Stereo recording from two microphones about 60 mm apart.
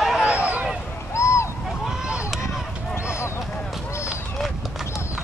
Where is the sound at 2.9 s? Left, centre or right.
Left.